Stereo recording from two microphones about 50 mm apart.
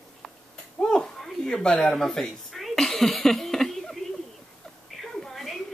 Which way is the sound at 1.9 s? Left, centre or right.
Centre.